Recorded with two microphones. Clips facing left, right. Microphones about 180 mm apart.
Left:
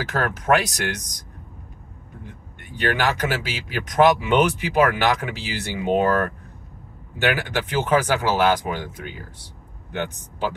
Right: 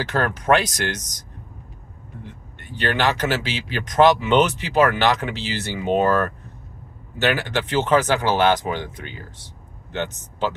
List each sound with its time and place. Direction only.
0.0 s speech: 5° left (ahead or behind)
2.7 s speech: 10° left (ahead or behind)